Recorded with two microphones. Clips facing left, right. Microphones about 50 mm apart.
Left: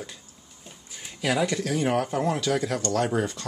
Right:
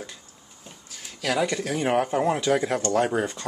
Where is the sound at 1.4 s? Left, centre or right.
Centre; by 3.1 s right.